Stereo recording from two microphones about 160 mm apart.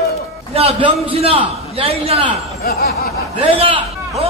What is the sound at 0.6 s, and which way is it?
A man's voice, 35° right (ahead or behind).